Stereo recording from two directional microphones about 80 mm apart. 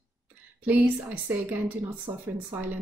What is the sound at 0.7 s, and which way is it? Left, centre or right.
Speech, centre.